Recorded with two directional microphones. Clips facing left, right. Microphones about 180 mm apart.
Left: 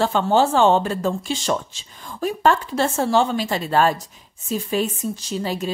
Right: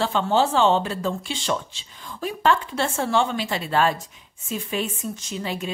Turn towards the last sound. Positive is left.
turn(degrees=40)  # may be behind; listen again after turning